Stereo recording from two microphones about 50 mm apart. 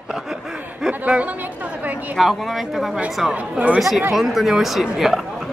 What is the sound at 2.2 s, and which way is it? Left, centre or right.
Speech, centre.